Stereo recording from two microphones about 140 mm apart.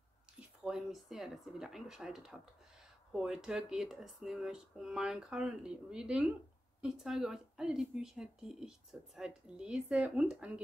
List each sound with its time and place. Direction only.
0.7 s speech: 5° right (ahead or behind)